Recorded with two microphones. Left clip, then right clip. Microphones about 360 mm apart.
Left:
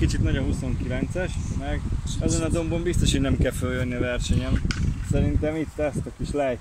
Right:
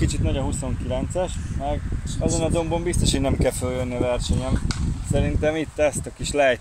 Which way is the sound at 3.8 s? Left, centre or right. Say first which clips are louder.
Right 5 dB; right.